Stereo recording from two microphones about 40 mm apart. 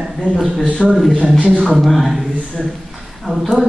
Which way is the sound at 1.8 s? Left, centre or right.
Centre.